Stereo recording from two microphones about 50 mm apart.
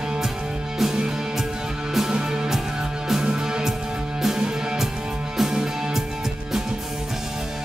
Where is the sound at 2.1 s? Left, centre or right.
Centre.